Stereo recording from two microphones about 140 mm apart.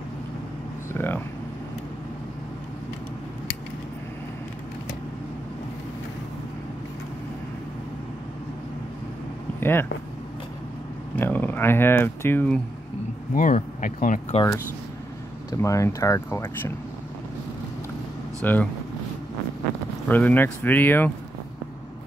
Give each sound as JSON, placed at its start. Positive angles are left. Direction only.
{"t": 0.9, "sound": "speech", "side_deg": 15}
{"t": 9.6, "sound": "a sound", "side_deg": 15}
{"t": 11.1, "sound": "speech", "side_deg": 15}
{"t": 13.3, "sound": "speech", "side_deg": 70}
{"t": 15.5, "sound": "speech", "side_deg": 20}
{"t": 18.4, "sound": "speech", "side_deg": 10}
{"t": 20.1, "sound": "speech", "side_deg": 10}